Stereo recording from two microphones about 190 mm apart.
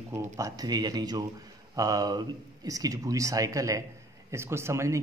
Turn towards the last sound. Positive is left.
turn(degrees=-15)  # may be behind; listen again after turning